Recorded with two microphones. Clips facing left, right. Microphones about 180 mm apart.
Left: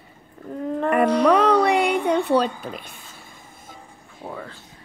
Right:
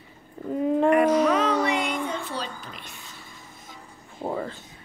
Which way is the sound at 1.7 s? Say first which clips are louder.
Left 8 dB; 60° left (ahead or behind).